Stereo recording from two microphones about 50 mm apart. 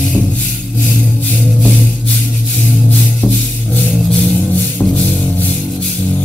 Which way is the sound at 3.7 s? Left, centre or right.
Left.